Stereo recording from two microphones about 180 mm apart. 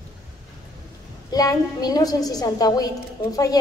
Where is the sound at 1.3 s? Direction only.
20° left (ahead or behind).